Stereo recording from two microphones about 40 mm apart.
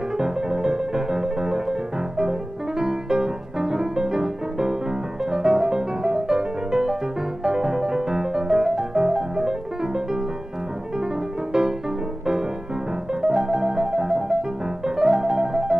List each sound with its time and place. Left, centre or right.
0.2 s music: centre
13.2 s piano: centre